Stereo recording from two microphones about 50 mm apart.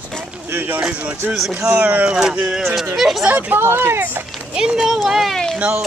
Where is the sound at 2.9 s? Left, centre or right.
Centre.